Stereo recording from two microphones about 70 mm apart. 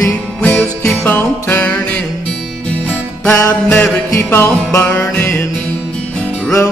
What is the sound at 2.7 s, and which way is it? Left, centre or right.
Music, centre.